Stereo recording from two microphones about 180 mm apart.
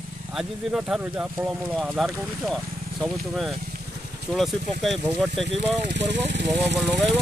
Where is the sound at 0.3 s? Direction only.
5° right (ahead or behind).